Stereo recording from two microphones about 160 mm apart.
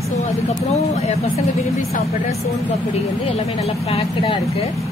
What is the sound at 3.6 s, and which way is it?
Speech, 40° left (ahead or behind).